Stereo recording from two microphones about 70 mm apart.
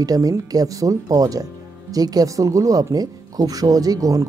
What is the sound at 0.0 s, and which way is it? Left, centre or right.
Speech, right.